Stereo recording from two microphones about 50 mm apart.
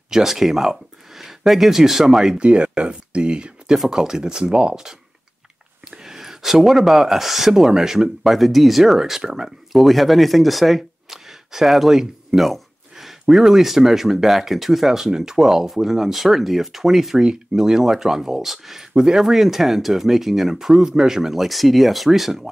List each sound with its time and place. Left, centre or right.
0.1 s speech: centre
2.4 s speech: right
3.7 s speech: centre
9.8 s speech: centre